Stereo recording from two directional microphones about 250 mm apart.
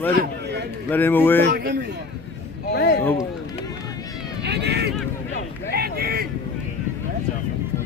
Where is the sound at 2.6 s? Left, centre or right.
Left.